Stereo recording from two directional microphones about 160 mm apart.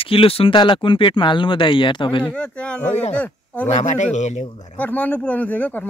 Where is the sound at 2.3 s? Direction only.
5° left (ahead or behind).